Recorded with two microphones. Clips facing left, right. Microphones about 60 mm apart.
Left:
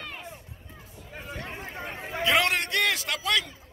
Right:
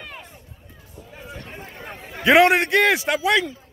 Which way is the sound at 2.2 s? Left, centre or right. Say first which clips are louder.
Right 10 dB; right.